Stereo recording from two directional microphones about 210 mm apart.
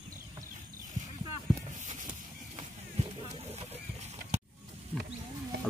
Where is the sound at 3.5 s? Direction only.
30° right (ahead or behind).